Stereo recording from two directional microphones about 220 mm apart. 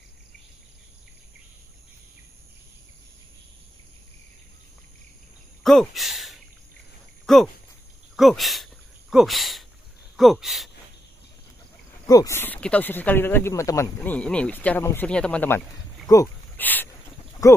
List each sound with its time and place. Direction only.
5.6 s speech: centre (ahead or behind)
12.1 s speech: 15° left (ahead or behind)